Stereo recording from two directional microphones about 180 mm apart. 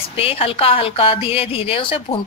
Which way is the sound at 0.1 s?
30° left (ahead or behind).